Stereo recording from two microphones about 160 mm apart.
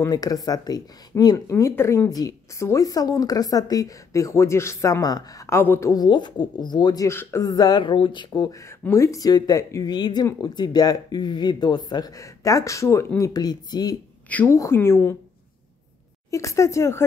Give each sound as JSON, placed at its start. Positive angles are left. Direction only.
{"t": 0.0, "sound": "speech", "side_deg": 25}
{"t": 14.3, "sound": "a woman's voice", "side_deg": 15}
{"t": 16.3, "sound": "speech", "side_deg": 20}